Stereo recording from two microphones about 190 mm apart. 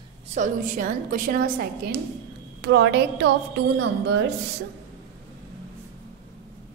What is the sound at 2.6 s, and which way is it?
Speech, 65° right (ahead or behind).